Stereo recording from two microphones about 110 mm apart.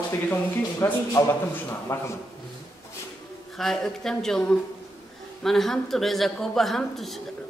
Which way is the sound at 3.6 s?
5° left (ahead or behind).